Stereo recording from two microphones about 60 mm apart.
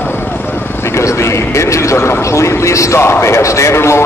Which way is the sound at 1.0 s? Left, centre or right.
Left.